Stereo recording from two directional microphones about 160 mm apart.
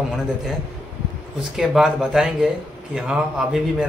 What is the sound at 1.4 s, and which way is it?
A man's voice, centre (ahead or behind).